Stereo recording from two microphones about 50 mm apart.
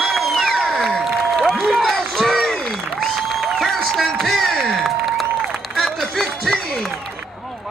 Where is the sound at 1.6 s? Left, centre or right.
Centre.